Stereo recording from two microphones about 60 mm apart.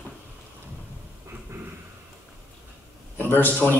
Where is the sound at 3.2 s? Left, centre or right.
Left.